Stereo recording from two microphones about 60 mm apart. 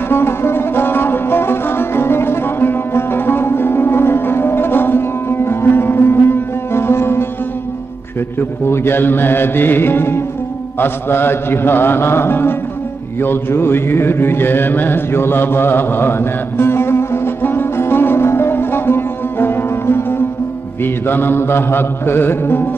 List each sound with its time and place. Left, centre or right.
0.1 s music: left
8.4 s music: left
13.2 s mantra: left
20.8 s music: left